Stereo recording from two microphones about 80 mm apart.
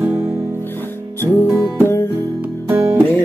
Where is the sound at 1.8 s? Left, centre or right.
Left.